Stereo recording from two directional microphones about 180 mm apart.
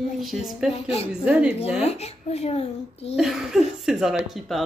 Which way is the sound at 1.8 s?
35° left (ahead or behind).